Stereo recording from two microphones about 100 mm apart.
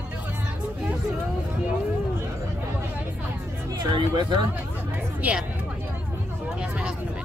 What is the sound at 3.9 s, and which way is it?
Speech, 50° right (ahead or behind).